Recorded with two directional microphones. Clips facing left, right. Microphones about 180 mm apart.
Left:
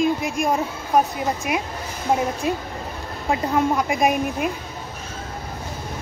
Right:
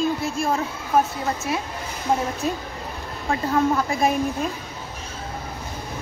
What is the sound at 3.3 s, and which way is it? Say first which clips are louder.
A woman's voice: even; 15° left (ahead or behind).